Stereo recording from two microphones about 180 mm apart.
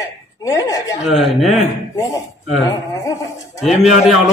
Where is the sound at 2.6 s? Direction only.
20° left (ahead or behind).